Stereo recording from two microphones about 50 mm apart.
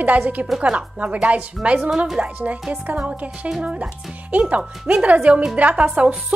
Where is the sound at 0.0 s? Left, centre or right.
Right.